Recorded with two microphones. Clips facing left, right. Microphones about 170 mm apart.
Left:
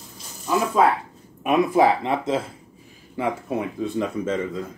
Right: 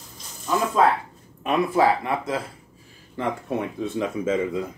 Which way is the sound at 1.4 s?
15° left (ahead or behind).